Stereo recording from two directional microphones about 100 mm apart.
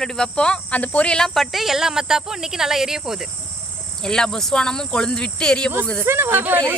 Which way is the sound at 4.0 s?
5° left (ahead or behind).